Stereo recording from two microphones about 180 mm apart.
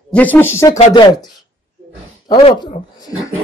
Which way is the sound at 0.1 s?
10° left (ahead or behind).